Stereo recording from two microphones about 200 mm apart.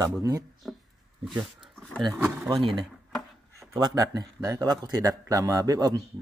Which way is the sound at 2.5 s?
25° right (ahead or behind).